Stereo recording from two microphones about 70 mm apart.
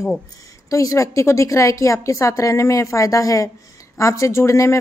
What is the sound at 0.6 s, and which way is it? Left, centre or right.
A woman's voice, left.